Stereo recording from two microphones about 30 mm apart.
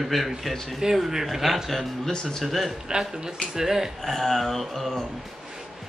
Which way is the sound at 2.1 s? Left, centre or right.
Left.